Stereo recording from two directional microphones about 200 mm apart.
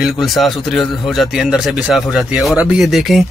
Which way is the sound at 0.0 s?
Centre (ahead or behind).